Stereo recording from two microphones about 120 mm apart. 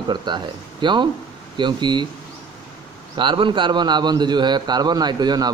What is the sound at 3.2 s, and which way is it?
A man's voice, 40° right (ahead or behind).